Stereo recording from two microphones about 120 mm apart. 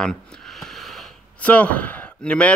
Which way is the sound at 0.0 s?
5° left (ahead or behind).